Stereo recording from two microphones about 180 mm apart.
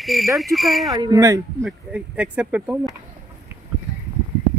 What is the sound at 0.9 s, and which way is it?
Speech, 20° right (ahead or behind).